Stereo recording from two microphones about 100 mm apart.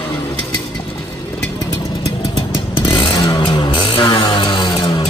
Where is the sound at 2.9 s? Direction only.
55° left (ahead or behind).